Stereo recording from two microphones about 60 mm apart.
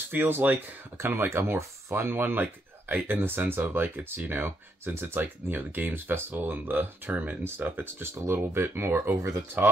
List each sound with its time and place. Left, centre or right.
0.1 s speech: right
9.6 s speech: right